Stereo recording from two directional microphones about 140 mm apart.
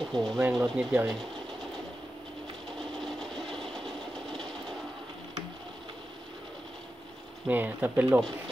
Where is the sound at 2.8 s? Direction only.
5° left (ahead or behind).